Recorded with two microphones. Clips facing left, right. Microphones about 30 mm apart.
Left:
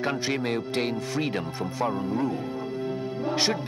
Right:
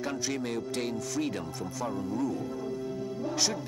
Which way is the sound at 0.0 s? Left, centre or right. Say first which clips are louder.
Left 5 dB; left.